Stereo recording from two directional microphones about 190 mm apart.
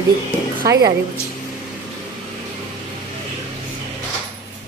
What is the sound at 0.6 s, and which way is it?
Speech, 20° right (ahead or behind).